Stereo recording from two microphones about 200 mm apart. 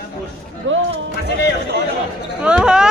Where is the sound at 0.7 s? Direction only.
75° right (ahead or behind).